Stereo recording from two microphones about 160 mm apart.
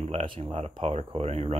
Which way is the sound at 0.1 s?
35° right (ahead or behind).